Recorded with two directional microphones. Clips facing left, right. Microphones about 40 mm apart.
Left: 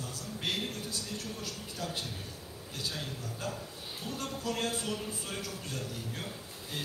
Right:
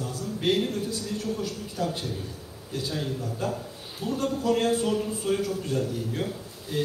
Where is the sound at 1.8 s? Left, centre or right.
Right.